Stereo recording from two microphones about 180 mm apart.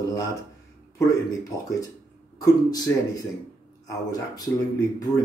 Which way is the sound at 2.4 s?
20° left (ahead or behind).